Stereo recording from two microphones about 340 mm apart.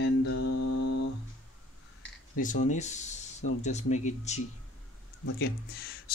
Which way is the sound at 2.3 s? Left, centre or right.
Left.